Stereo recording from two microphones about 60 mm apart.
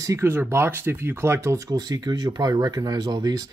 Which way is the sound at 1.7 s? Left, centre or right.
Right.